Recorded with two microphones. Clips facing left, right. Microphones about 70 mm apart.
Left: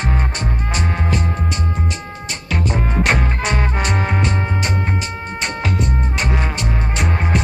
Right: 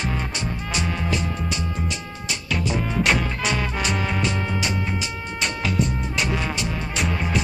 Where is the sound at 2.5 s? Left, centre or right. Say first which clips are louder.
Left 4 dB; left.